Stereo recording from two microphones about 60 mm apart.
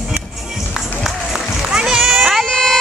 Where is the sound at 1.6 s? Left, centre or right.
Centre.